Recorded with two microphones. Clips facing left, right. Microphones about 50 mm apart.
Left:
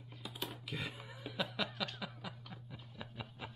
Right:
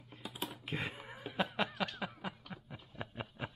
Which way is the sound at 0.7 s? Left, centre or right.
Right.